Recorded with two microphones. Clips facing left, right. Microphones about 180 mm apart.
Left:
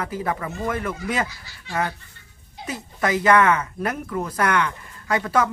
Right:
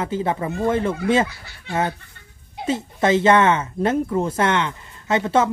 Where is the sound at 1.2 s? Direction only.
55° right (ahead or behind).